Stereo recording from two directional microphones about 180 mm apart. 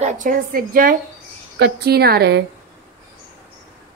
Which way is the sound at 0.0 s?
45° right (ahead or behind).